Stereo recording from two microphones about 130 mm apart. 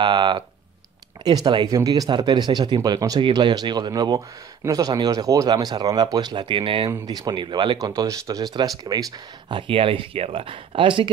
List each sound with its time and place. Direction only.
0.0 s speech: 35° right (ahead or behind)
6.9 s speech: 30° right (ahead or behind)
7.8 s speech: 25° right (ahead or behind)
9.5 s speech: 40° right (ahead or behind)